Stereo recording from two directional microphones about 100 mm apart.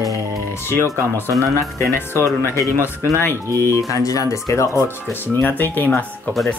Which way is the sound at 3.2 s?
25° left (ahead or behind).